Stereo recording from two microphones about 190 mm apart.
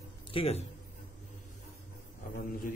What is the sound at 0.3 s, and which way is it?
Speech, 30° left (ahead or behind).